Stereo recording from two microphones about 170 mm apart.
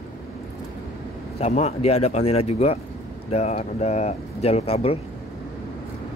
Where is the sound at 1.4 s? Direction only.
40° left (ahead or behind).